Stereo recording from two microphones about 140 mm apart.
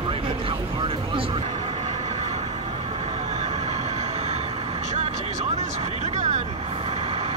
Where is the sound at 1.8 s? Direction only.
55° right (ahead or behind).